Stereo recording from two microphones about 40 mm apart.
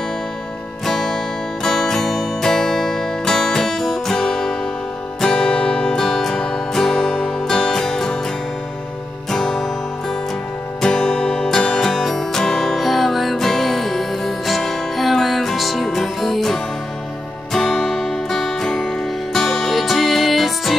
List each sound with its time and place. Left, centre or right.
0.8 s music: centre
5.9 s music: centre
9.3 s music: centre
10.8 s music: centre
12.7 s music: centre